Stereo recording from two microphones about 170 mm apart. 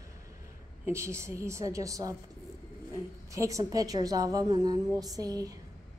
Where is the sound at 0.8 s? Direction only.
15° right (ahead or behind).